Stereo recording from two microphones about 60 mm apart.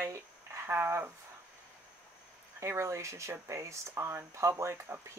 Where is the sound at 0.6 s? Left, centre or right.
Right.